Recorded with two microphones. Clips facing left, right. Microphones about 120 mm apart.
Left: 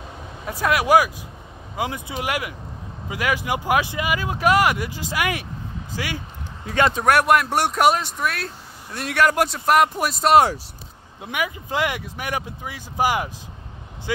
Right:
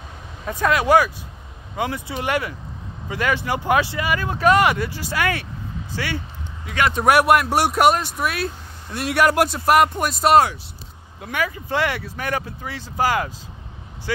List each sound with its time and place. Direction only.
0.5 s speech: 10° left (ahead or behind)
6.6 s a man's voice: 30° left (ahead or behind)
6.9 s speech: 5° right (ahead or behind)
11.1 s speech: 20° left (ahead or behind)